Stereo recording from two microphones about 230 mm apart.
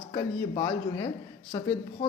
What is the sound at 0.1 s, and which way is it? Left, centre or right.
A man's voice, centre.